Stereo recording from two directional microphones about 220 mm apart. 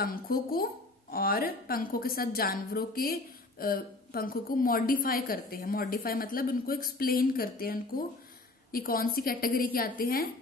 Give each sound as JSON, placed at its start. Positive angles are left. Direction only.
{"t": 0.0, "sound": "a woman's voice", "side_deg": 40}